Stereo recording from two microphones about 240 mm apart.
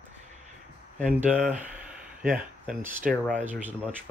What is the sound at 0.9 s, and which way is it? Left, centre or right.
Speech, centre.